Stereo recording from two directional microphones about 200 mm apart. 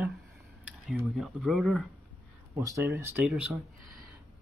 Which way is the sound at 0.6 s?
5° right (ahead or behind).